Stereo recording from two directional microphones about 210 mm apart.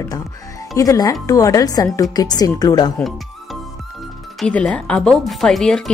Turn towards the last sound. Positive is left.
turn(degrees=5)  # may be behind; listen again after turning